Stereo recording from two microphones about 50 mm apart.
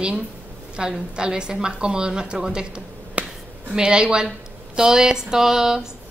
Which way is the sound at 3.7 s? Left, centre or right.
Centre.